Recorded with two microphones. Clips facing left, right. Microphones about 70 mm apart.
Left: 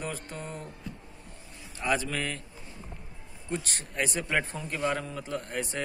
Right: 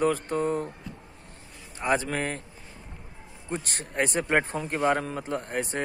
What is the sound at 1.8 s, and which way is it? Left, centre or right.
Speech, right.